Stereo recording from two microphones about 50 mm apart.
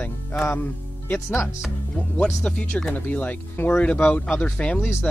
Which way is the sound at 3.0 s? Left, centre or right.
Left.